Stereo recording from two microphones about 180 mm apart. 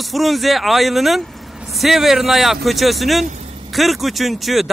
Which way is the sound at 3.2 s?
40° right (ahead or behind).